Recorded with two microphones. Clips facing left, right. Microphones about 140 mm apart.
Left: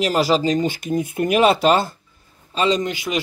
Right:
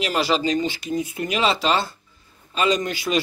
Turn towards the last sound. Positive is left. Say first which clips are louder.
# left 1 dB
turn(degrees=20)  # may be behind; listen again after turning